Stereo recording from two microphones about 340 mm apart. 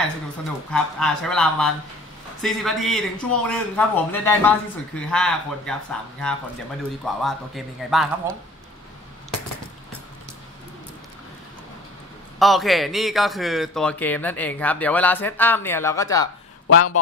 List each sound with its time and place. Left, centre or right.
0.7 s a man's voice: centre
12.4 s a man's voice: centre
16.6 s a man's voice: left